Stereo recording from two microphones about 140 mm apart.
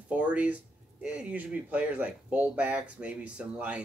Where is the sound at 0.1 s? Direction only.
10° right (ahead or behind).